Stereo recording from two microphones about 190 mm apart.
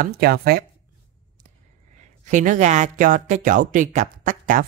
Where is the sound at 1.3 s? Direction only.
40° right (ahead or behind).